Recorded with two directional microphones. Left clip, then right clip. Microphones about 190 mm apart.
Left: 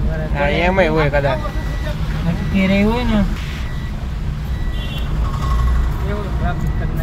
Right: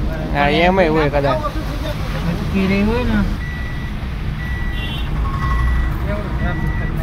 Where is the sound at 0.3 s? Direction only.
20° right (ahead or behind).